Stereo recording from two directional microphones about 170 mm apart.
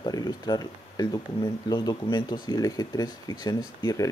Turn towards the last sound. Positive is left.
turn(degrees=20)  # may be behind; listen again after turning